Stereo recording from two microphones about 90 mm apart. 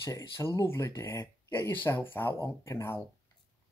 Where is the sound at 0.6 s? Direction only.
30° left (ahead or behind).